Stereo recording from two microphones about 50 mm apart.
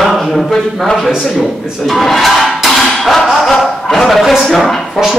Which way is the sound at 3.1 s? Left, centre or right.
Centre.